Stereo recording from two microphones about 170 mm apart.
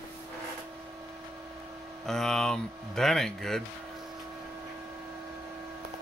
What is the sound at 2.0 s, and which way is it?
Speech, 5° left (ahead or behind).